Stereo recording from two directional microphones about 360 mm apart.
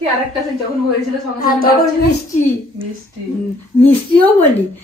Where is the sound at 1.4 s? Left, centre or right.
Left.